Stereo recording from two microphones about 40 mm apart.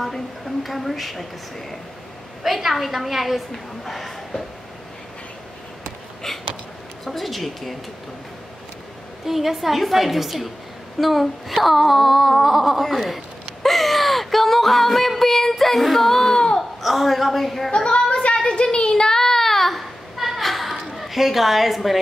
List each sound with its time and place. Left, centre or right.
0.7 s speech: centre
2.4 s speech: centre
6.3 s a sound: centre
7.1 s speech: centre
9.2 s speech: centre
16.8 s speech: centre
17.7 s child singing: left; by 19.9 s centre
20.2 s a sound: centre
20.8 s a woman's voice: centre